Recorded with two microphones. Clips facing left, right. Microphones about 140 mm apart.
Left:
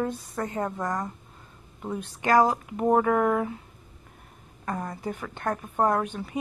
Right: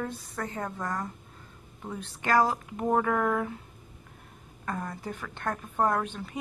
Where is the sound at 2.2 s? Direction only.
15° left (ahead or behind).